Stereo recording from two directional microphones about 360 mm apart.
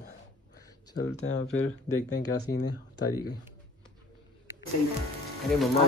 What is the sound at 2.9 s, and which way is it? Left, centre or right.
Speech, centre.